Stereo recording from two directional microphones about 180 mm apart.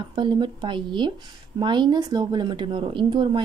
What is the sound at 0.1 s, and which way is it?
Speech, 25° right (ahead or behind).